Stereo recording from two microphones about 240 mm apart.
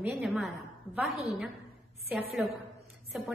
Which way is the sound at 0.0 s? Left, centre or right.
Centre.